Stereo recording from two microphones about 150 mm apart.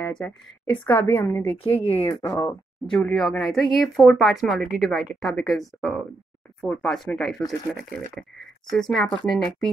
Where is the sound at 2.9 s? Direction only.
Centre (ahead or behind).